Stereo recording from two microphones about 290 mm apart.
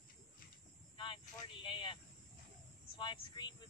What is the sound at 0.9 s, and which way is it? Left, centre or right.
Speech, centre.